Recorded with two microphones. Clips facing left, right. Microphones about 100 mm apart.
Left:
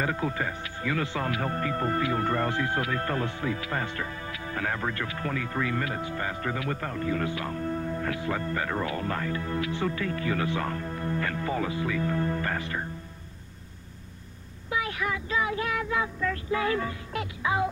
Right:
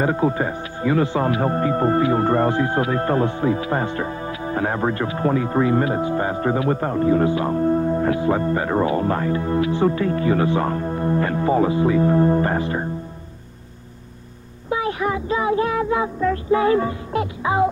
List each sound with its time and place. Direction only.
0.0 s speech: 30° right (ahead or behind)
14.7 s child singing: 30° right (ahead or behind)